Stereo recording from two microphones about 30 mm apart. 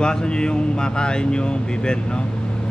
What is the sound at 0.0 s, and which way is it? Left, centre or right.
Speech, left.